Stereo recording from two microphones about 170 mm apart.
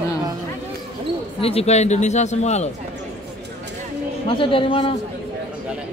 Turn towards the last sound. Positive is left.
turn(degrees=30)  # may be behind; listen again after turning